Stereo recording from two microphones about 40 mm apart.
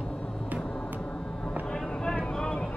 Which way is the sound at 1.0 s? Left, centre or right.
Left.